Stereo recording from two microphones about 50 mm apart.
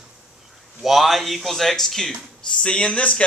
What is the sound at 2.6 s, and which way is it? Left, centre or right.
Speech, centre.